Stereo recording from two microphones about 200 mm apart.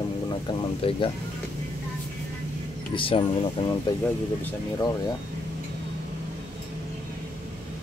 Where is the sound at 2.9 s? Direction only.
25° left (ahead or behind).